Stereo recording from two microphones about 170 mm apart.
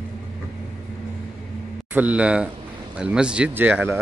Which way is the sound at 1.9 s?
10° right (ahead or behind).